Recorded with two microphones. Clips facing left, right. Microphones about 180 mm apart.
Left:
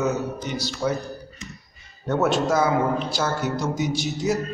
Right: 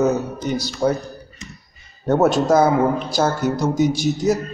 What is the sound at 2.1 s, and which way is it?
Speech, 40° right (ahead or behind).